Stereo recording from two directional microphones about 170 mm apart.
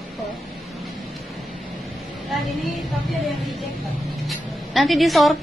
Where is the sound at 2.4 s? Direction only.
Centre (ahead or behind).